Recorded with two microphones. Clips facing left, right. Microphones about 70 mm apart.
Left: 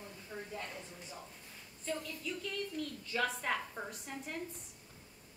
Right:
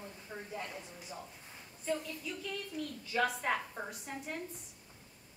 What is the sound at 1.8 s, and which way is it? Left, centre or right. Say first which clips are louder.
A woman's voice: right 3 dB; centre.